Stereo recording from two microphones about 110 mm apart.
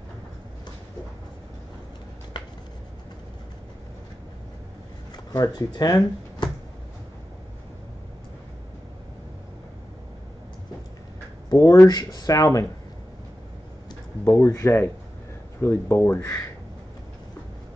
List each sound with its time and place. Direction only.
2.3 s a sound: 40° left (ahead or behind)
5.1 s speech: 35° left (ahead or behind)
11.5 s speech: 30° left (ahead or behind)
14.2 s speech: 30° left (ahead or behind)